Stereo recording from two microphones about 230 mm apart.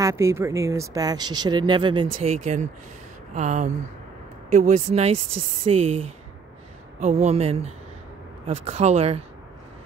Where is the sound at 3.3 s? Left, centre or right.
Right.